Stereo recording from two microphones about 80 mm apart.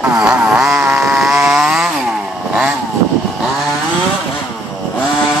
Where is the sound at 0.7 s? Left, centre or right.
Right.